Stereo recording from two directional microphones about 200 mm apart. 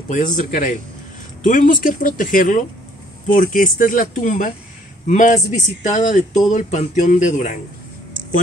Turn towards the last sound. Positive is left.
turn(degrees=40)  # may be behind; listen again after turning